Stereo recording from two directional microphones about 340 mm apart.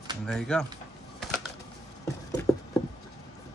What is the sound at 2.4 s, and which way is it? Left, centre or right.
Patter, centre.